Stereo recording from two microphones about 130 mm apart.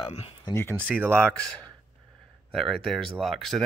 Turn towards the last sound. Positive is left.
turn(degrees=0)  # may be behind; listen again after turning